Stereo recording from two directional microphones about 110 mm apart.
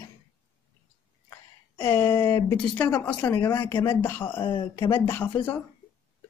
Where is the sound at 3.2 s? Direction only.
20° left (ahead or behind).